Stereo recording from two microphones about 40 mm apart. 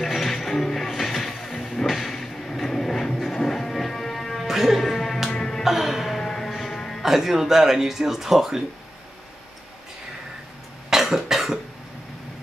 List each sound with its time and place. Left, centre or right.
0.0 s music: centre
1.8 s train: centre
3.3 s music: centre
4.5 s music: centre
5.6 s music: centre
7.0 s speech: centre
10.9 s cough: centre